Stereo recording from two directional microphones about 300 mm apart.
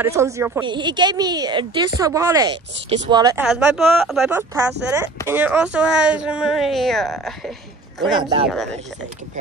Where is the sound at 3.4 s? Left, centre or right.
Centre.